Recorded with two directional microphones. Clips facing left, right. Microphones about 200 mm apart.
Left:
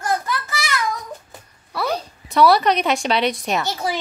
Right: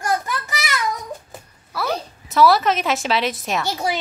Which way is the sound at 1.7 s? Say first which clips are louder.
Left 1 dB; centre (ahead or behind).